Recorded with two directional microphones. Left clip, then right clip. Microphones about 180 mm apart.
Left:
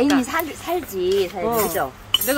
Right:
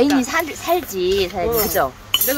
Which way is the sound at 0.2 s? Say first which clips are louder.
Right 3 dB; 10° right (ahead or behind).